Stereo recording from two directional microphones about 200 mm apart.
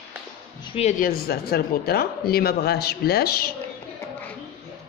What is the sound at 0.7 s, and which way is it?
Speech, 35° left (ahead or behind).